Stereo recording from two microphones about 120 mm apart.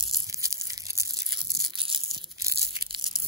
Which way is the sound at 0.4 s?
25° right (ahead or behind).